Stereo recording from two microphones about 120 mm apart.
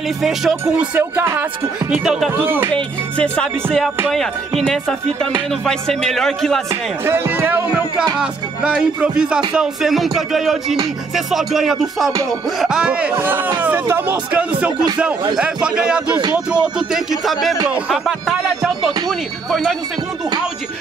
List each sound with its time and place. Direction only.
0.2 s music: centre (ahead or behind)
0.9 s music: 20° right (ahead or behind)
2.0 s music: centre (ahead or behind)
2.3 s music: 15° right (ahead or behind)
2.7 s music: 10° left (ahead or behind)
6.7 s music: 20° right (ahead or behind)
16.2 s speech: 35° right (ahead or behind)
16.6 s music: 5° right (ahead or behind)